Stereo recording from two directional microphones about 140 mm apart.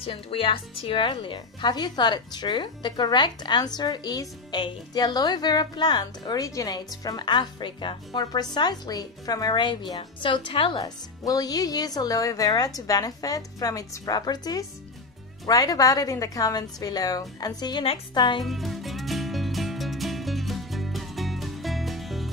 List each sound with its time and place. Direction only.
0.0 s speech: 40° left (ahead or behind)
18.4 s music: centre (ahead or behind)